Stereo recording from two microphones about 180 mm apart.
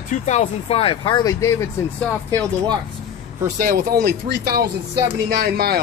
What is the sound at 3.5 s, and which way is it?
Speech, 55° right (ahead or behind).